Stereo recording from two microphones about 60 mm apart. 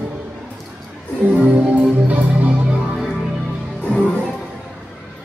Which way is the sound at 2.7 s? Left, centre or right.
Centre.